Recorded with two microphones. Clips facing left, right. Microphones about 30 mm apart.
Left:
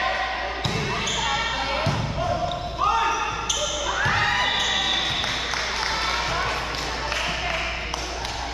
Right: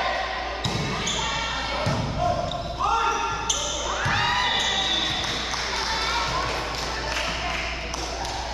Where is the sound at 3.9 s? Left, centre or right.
Centre.